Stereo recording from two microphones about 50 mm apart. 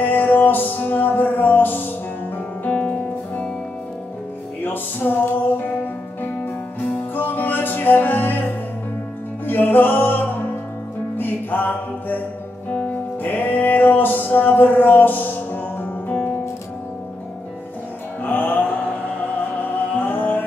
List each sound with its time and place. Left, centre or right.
0.0 s music: left
2.7 s music: left
4.6 s music: left
7.2 s music: left
18.2 s music: left
20.0 s music: left